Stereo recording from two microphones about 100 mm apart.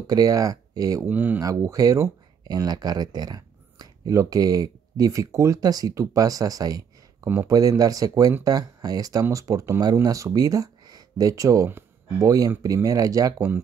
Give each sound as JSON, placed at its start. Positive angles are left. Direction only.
{"t": 0.0, "sound": "speech", "side_deg": -40}
{"t": 1.0, "sound": "speech", "side_deg": -20}
{"t": 1.4, "sound": "speech", "side_deg": -35}